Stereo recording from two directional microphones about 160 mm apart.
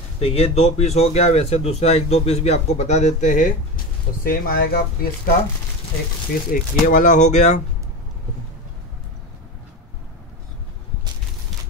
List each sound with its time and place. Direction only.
0.2 s speech: 40° left (ahead or behind)
4.2 s speech: 70° left (ahead or behind)
6.5 s speech: 55° left (ahead or behind)